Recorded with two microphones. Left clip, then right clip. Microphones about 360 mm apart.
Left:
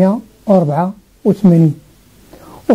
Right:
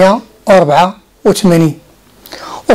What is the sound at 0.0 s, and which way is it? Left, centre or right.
Speech, centre.